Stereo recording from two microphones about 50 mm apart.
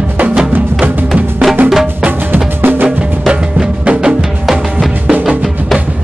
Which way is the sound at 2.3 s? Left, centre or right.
Right.